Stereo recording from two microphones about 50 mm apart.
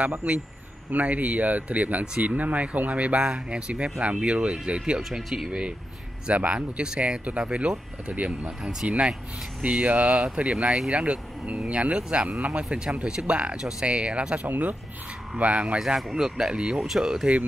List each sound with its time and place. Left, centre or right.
0.2 s speech: right; by 5.5 s centre
6.2 s speech: right
12.6 s speech: centre
15.8 s speech: centre